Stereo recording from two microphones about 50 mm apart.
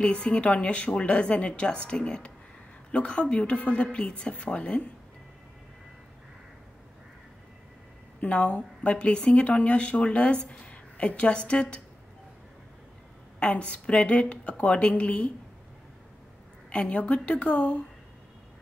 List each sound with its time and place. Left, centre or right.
0.0 s a woman's voice: left
8.2 s a woman's voice: left
13.4 s a woman's voice: left
16.7 s a woman's voice: left